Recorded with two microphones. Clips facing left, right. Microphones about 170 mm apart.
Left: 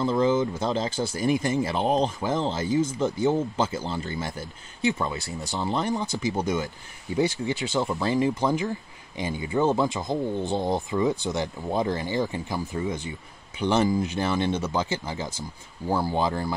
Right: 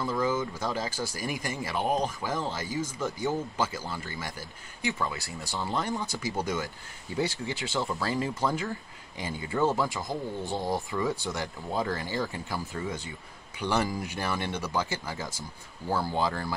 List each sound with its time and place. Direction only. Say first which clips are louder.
0.0 s speech: left 6 dB; 25° left (ahead or behind)